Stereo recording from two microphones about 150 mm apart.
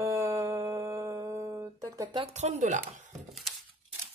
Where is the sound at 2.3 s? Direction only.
45° right (ahead or behind).